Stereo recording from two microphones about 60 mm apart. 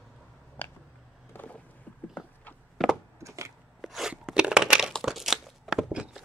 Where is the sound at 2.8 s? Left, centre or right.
Centre.